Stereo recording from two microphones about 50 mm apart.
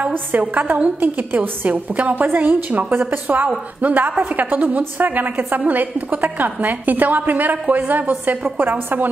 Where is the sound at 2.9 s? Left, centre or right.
Right.